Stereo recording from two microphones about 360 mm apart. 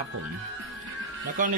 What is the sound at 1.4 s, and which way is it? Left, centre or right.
Speech, right.